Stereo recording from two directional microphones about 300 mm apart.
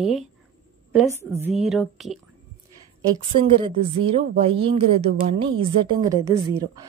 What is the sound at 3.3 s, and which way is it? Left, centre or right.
A woman's voice, centre.